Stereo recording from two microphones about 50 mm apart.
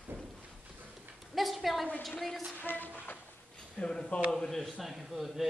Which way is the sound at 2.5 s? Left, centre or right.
Left.